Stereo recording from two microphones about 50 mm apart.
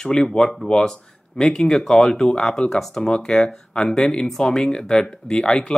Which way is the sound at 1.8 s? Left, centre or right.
Centre.